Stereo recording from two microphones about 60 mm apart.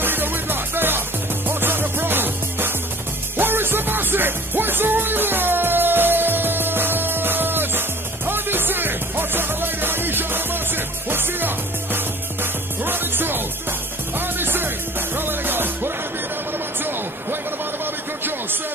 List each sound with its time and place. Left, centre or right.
0.0 s music: right